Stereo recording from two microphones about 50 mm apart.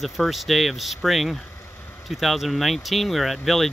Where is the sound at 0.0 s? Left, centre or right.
Centre.